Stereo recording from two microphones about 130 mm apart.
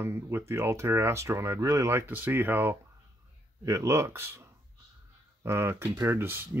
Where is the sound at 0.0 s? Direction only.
20° right (ahead or behind).